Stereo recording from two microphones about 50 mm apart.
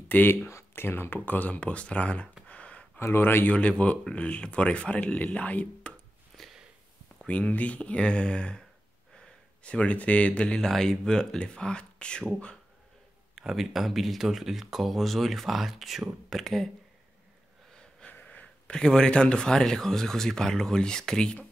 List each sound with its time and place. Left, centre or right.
0.1 s speech: left
0.5 s a sound: left
0.8 s speech: left
2.4 s a sound: left
3.0 s speech: left
3.4 s speech: left
7.2 s speech: left
13.3 s speech: centre
18.2 s a sound: left
18.8 s speech: centre